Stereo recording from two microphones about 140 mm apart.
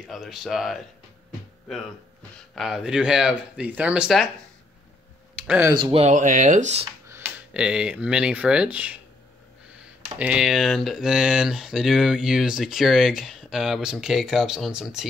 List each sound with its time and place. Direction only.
0.1 s speech: 5° right (ahead or behind)
2.5 s speech: centre (ahead or behind)
5.4 s a sound: 10° right (ahead or behind)
5.8 s speech: 35° right (ahead or behind)
6.0 s speech: 65° right (ahead or behind)
7.1 s speech: 15° right (ahead or behind)
10.1 s speech: 10° right (ahead or behind)